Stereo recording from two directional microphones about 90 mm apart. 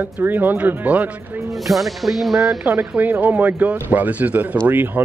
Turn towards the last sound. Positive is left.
turn(degrees=-20)  # may be behind; listen again after turning